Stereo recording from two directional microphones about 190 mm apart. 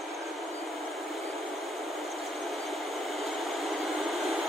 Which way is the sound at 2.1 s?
Centre (ahead or behind).